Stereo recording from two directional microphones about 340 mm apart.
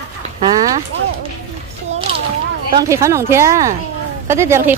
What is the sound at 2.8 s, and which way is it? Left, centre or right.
Speech, centre.